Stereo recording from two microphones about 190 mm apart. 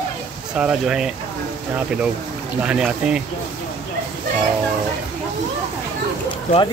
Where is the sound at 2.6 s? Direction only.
5° right (ahead or behind).